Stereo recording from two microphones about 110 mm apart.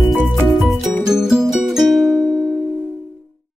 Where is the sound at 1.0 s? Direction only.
5° right (ahead or behind).